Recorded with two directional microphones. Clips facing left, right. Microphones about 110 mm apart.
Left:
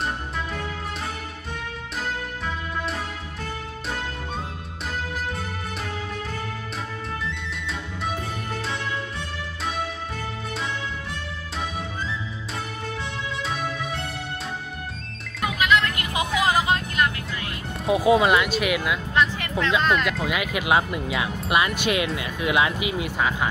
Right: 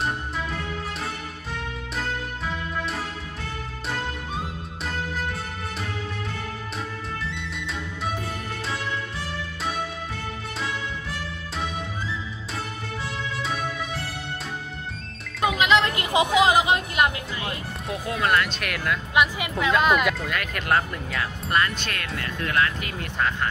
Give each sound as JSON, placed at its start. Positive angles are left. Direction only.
{"t": 15.4, "sound": "vehicle", "side_deg": -20}
{"t": 17.8, "sound": "speech", "side_deg": 5}
{"t": 19.1, "sound": "speech", "side_deg": -10}